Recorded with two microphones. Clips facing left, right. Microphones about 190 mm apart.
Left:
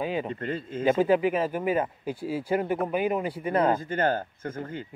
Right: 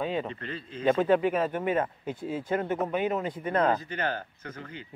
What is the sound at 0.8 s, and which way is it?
Speech, 5° left (ahead or behind).